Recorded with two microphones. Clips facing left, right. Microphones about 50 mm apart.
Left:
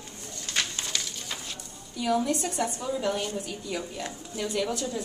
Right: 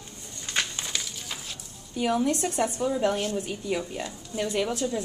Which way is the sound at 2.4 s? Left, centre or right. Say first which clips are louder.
Right 4 dB; right.